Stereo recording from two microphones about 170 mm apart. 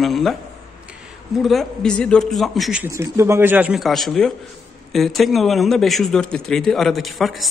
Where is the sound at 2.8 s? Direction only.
15° right (ahead or behind).